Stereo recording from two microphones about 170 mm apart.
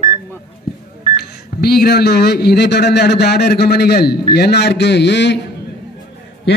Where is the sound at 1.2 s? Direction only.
65° left (ahead or behind); by 5.3 s 90° left.